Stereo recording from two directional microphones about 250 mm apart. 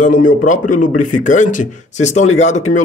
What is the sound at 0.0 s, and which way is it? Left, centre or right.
A man's voice, left.